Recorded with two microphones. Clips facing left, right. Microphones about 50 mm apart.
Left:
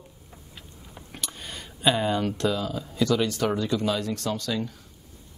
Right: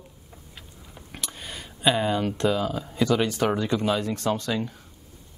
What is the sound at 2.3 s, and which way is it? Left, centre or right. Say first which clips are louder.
Speech: right 2 dB; right.